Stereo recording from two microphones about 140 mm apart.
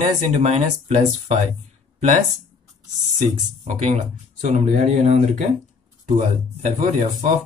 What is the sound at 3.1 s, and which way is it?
Speech, 60° right (ahead or behind).